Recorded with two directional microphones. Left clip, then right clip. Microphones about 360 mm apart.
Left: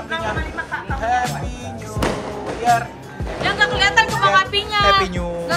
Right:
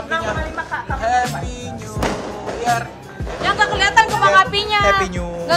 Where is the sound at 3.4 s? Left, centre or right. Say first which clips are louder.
Right 1 dB; centre.